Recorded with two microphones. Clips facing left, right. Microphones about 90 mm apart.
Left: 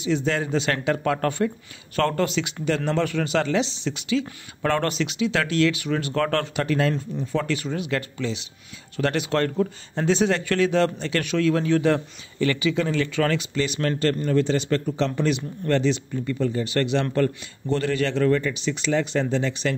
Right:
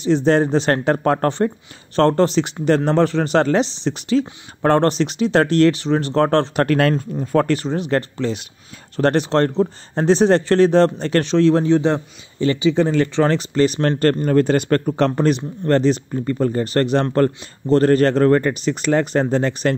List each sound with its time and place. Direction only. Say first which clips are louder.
0.0 s speech: right 8 dB; 40° right (ahead or behind)
6.5 s speech: right 6 dB; 60° right (ahead or behind); by 11.2 s 40° right (ahead or behind)
11.2 s speech: right 6 dB; 30° right (ahead or behind); by 19.7 s 50° right (ahead or behind)